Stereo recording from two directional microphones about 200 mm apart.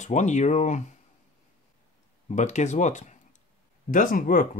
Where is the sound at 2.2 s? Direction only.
35° left (ahead or behind).